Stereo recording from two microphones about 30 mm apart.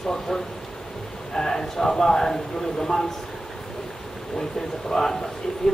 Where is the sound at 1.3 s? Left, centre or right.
Centre.